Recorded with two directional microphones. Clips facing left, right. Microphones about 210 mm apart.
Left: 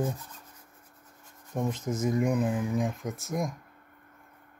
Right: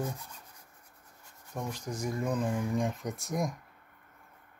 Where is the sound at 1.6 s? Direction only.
20° left (ahead or behind); by 3.5 s centre (ahead or behind).